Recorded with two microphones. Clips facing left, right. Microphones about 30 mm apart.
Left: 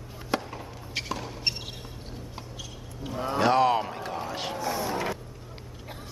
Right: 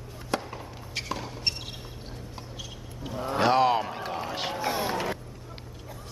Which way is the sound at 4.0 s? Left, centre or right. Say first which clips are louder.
Right 1 dB; centre.